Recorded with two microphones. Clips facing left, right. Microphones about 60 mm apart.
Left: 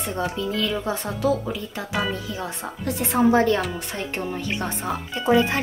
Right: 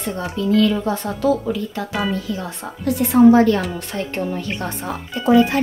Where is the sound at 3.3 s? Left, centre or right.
Left.